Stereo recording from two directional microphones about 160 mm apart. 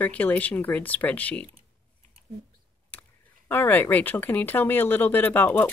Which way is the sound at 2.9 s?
10° left (ahead or behind).